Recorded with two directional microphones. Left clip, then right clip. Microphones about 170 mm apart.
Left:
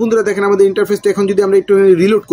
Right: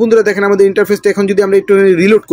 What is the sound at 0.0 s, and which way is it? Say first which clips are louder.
Speech: right 4 dB; 20° right (ahead or behind).